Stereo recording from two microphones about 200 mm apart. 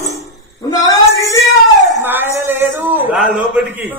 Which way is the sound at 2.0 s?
10° right (ahead or behind).